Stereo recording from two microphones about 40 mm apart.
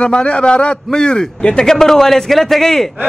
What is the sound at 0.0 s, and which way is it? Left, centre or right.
A man's voice, left.